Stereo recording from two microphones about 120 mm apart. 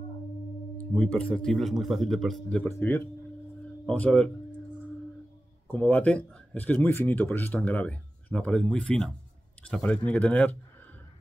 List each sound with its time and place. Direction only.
0.9 s a man's voice: 10° left (ahead or behind)
2.7 s speech: 20° left (ahead or behind)
5.7 s speech: 15° left (ahead or behind)